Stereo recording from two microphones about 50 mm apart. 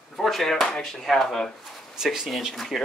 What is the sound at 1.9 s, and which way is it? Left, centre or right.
Speech, centre.